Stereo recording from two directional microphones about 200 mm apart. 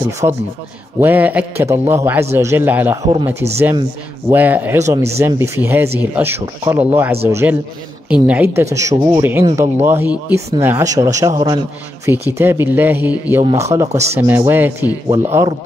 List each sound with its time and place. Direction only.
0.2 s speech: 20° right (ahead or behind)
0.9 s speech: 10° right (ahead or behind)
4.3 s speech: 10° right (ahead or behind)